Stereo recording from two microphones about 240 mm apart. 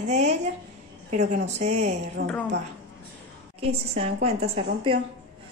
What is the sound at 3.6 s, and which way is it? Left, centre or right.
A woman's voice, right.